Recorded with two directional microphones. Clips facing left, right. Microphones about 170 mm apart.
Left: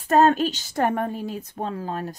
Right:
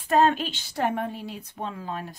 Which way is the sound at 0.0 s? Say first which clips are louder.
Left 4 dB; 45° left (ahead or behind).